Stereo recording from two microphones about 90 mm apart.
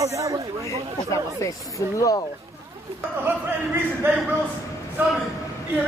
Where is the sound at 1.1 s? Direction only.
35° left (ahead or behind).